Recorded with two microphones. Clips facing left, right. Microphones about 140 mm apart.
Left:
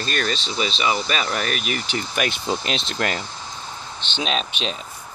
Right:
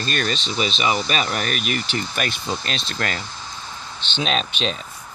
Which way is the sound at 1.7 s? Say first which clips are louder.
Right 1 dB; 10° left (ahead or behind).